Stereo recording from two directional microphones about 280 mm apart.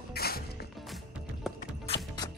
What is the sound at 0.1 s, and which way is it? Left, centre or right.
Music, left.